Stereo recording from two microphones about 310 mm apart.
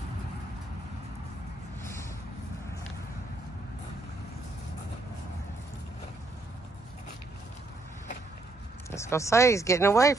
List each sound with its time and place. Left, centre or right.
8.9 s speech: centre